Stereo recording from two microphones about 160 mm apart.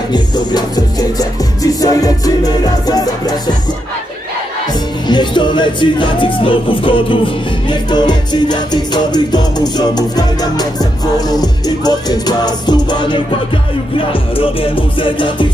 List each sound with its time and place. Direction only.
0.1 s music: 25° left (ahead or behind)
5.0 s music: 30° left (ahead or behind)